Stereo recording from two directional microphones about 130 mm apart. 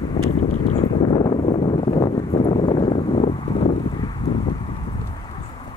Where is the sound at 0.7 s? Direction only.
35° left (ahead or behind).